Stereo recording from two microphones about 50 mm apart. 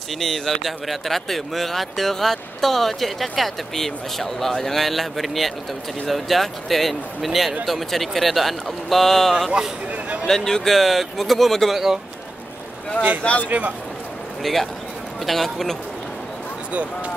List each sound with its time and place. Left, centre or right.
0.2 s speech: centre
9.5 s a sound: right
10.2 s speech: centre
11.7 s speech: centre
13.2 s speech: left
13.5 s a man's voice: right
14.4 s a man's voice: centre